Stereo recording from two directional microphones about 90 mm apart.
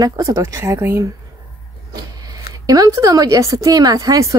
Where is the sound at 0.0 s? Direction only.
40° right (ahead or behind).